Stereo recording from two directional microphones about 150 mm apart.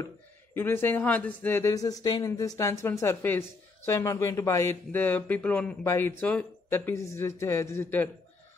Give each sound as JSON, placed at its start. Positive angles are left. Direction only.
{"t": 0.6, "sound": "speech", "side_deg": 15}